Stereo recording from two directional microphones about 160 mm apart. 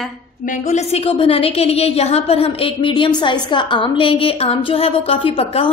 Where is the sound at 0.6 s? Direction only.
45° left (ahead or behind).